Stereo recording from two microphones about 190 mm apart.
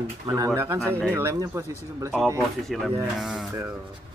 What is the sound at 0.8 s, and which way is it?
Speech, 5° left (ahead or behind).